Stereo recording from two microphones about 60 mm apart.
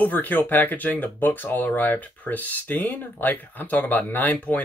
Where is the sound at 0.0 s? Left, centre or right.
Left.